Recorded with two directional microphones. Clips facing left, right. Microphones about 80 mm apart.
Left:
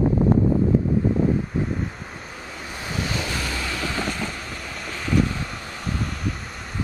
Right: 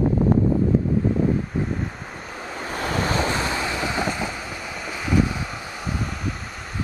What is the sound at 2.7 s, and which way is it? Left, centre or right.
Vehicle, right.